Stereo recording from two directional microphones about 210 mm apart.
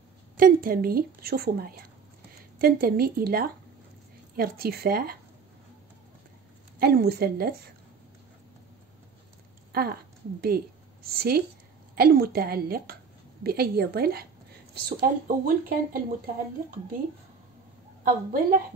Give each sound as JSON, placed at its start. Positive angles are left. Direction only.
{"t": 0.4, "sound": "a woman's voice", "side_deg": -45}
{"t": 6.8, "sound": "a woman's voice", "side_deg": -45}
{"t": 9.7, "sound": "a sound", "side_deg": -45}
{"t": 10.4, "sound": "a woman's voice", "side_deg": -45}
{"t": 18.0, "sound": "a woman's voice", "side_deg": -40}